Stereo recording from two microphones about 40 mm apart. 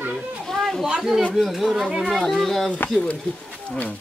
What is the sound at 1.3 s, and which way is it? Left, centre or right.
Speech, centre.